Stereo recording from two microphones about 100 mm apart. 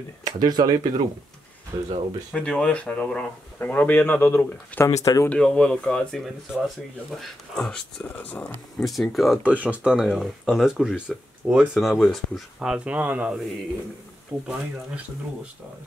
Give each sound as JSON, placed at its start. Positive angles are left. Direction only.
{"t": 0.2, "sound": "speech", "side_deg": -40}
{"t": 2.3, "sound": "speech", "side_deg": 10}
{"t": 5.0, "sound": "speech", "side_deg": 35}
{"t": 5.3, "sound": "speech", "side_deg": 10}
{"t": 8.8, "sound": "speech", "side_deg": 0}
{"t": 9.4, "sound": "speech", "side_deg": -15}
{"t": 12.5, "sound": "speech", "side_deg": -10}